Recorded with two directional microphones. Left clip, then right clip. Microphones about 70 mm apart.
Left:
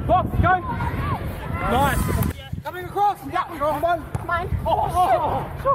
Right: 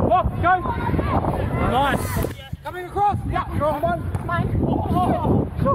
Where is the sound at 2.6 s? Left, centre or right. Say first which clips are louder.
Even; left.